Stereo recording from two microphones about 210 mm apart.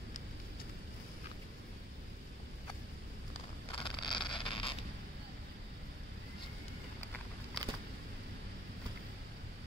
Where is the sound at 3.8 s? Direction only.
20° left (ahead or behind).